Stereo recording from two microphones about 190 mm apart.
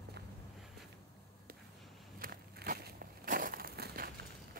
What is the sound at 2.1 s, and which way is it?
Crushing, 50° right (ahead or behind).